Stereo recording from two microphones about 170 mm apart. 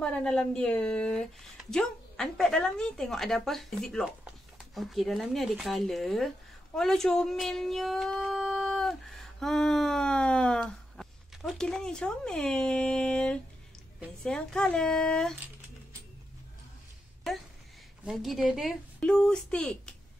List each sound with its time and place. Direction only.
0.0 s speech: 5° left (ahead or behind)
17.3 s speech: centre (ahead or behind)